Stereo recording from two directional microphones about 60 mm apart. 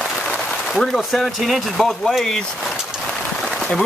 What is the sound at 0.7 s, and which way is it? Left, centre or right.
Speech, centre.